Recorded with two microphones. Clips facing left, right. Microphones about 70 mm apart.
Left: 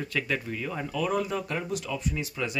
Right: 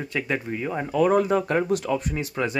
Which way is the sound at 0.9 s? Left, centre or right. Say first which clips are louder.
Right 9 dB; right.